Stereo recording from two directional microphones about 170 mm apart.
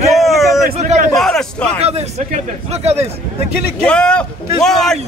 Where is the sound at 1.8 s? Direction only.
40° right (ahead or behind).